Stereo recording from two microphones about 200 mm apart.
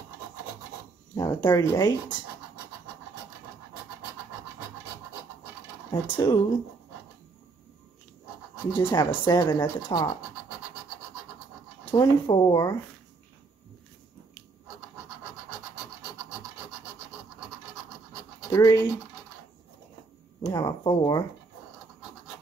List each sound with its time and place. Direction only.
1.1 s speech: 20° left (ahead or behind)
5.9 s speech: 20° left (ahead or behind)
8.7 s speech: 15° left (ahead or behind)
11.8 s speech: 20° left (ahead or behind)
18.5 s speech: 20° left (ahead or behind)
20.4 s speech: 20° left (ahead or behind)